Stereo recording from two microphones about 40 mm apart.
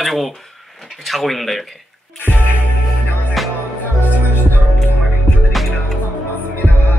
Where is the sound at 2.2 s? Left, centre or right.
Left.